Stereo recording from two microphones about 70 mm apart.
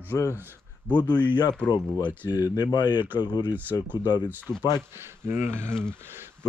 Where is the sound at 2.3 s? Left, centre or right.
Left.